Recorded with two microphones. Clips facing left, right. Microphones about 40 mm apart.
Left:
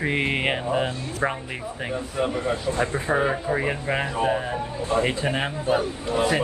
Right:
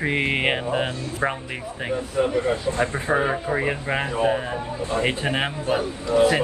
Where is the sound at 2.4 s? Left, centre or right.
Right.